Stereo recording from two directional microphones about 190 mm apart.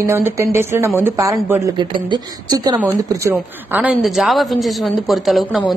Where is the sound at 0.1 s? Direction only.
15° right (ahead or behind).